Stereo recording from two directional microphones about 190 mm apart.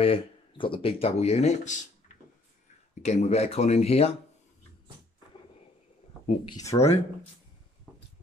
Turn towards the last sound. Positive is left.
turn(degrees=15)  # may be behind; listen again after turning